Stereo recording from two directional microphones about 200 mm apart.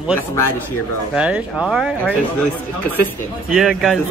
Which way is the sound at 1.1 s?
5° right (ahead or behind).